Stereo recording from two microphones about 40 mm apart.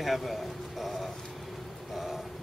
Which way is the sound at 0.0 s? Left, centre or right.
Centre.